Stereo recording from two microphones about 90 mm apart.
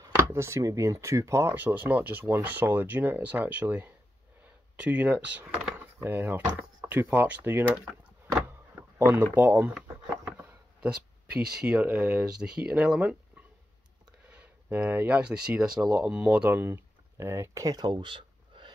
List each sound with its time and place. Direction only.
0.1 s speech: 30° right (ahead or behind); by 5.5 s 15° right (ahead or behind)
5.9 s speech: 25° right (ahead or behind)
8.5 s power windows: 20° right (ahead or behind)
10.8 s speech: 10° right (ahead or behind)
14.3 s speech: 20° right (ahead or behind)
17.6 s a sound: 50° right (ahead or behind)